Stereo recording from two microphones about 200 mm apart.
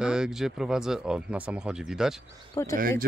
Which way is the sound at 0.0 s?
5° right (ahead or behind).